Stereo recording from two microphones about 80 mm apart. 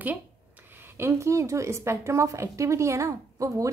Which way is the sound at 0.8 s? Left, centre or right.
Right.